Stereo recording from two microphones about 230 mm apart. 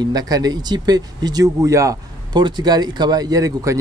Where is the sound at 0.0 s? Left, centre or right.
Centre.